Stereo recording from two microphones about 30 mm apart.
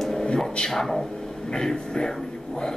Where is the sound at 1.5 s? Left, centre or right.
Centre.